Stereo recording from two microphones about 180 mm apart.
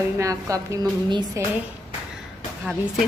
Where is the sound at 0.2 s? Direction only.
15° right (ahead or behind).